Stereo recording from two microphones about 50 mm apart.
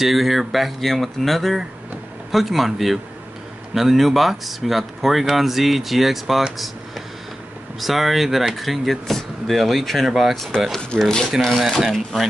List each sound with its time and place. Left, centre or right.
0.0 s speech: centre
7.8 s speech: centre
10.5 s speech: centre
11.4 s speech: centre